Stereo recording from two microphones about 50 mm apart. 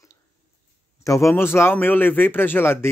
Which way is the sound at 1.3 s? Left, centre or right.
Left.